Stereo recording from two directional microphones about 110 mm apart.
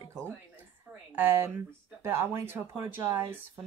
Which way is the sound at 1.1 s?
20° right (ahead or behind).